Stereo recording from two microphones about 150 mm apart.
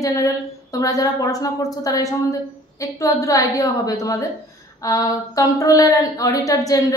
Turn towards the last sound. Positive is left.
turn(degrees=25)  # may be behind; listen again after turning